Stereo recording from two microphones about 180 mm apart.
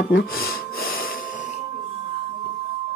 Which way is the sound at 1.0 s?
55° left (ahead or behind).